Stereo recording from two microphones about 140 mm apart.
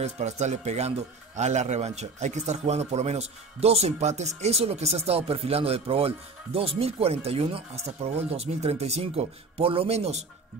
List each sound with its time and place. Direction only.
0.0 s speech: 55° right (ahead or behind)